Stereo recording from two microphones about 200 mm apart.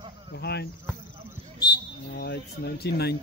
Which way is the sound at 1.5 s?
20° left (ahead or behind).